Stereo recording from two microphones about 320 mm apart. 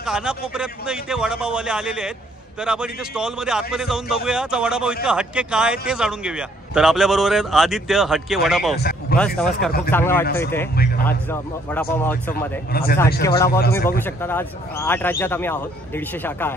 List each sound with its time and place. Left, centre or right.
0.0 s a man's voice: centre
8.7 s speech: left
9.2 s a man's voice: centre
11.7 s a man's voice: centre
12.7 s speech: left
13.2 s speech: centre